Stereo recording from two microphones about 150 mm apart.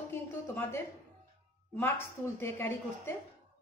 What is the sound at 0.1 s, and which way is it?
A woman's voice, 15° left (ahead or behind).